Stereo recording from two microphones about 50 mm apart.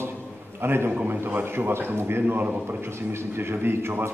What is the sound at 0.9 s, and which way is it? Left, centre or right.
A man's voice, right.